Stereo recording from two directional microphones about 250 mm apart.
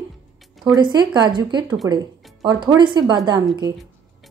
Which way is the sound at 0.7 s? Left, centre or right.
Centre.